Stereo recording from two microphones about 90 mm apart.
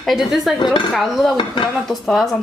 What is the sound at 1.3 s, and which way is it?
Dishes, 65° left (ahead or behind).